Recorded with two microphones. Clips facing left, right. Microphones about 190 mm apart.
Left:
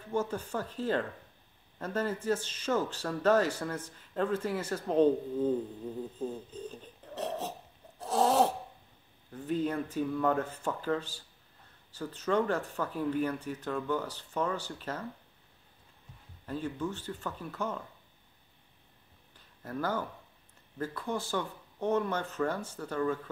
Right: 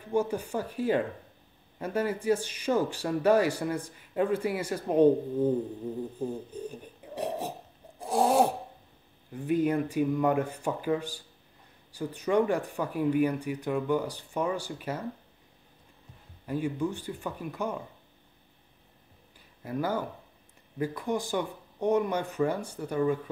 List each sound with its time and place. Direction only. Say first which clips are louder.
0.1 s a man's voice: right 4 dB; 10° right (ahead or behind)
8.0 s a sound: right 2 dB; 10° right (ahead or behind)
9.3 s a man's voice: right 5 dB; 10° right (ahead or behind)
16.4 s a man's voice: right 5 dB; 10° right (ahead or behind)
19.6 s a man's voice: right 3 dB; 10° right (ahead or behind)